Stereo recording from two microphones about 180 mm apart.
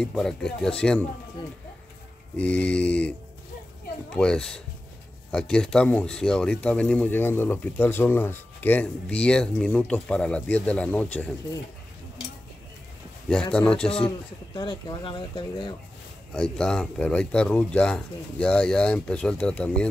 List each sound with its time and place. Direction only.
0.0 s speech: centre (ahead or behind)
2.3 s speech: 5° left (ahead or behind)
13.3 s speech: 5° left (ahead or behind)
14.0 s speech: 25° left (ahead or behind)
16.3 s speech: 5° left (ahead or behind)